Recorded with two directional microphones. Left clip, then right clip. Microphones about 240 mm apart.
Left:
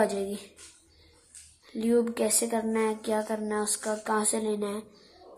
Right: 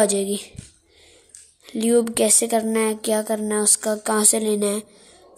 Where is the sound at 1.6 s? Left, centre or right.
Right.